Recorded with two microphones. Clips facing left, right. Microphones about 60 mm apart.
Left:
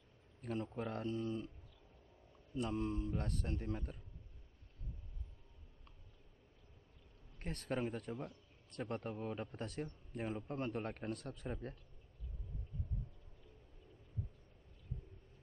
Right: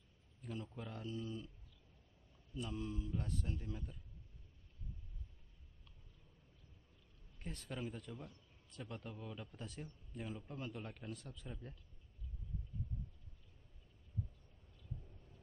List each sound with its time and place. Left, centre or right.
0.4 s a man's voice: left
2.5 s a man's voice: left
7.3 s a man's voice: left